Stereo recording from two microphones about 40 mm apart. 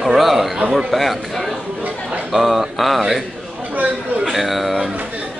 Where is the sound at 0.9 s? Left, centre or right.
Centre.